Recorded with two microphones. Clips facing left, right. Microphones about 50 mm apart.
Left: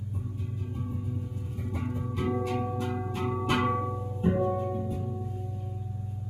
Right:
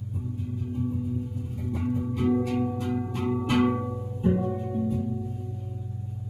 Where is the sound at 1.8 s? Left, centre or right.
Centre.